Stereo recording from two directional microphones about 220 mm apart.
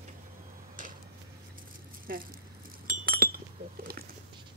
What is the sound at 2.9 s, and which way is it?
Chink, 40° right (ahead or behind).